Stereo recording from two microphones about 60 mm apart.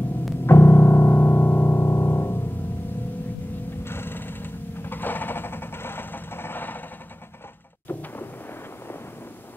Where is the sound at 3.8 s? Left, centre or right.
Left.